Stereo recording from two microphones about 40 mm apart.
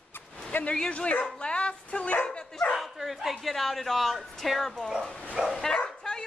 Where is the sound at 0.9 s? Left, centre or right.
Left.